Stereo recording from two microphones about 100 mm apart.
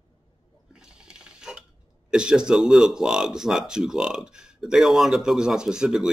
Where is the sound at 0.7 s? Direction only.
10° right (ahead or behind).